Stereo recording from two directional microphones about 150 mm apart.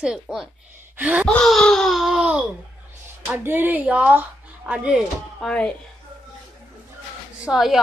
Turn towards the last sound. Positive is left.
turn(degrees=-5)  # may be behind; listen again after turning